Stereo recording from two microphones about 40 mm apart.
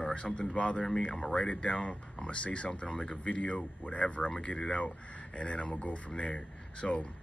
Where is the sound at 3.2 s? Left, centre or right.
Left.